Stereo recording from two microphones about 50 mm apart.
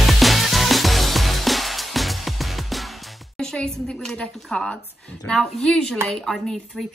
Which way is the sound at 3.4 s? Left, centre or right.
Centre.